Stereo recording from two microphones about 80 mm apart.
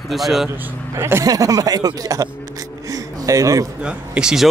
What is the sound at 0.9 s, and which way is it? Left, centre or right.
Speech, right.